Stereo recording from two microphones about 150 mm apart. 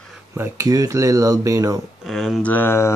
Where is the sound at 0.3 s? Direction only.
20° right (ahead or behind).